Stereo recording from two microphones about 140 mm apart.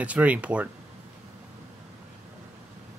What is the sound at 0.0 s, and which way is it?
Speech, 10° right (ahead or behind).